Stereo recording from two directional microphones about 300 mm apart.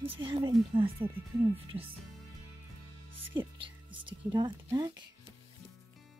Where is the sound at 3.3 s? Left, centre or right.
Centre.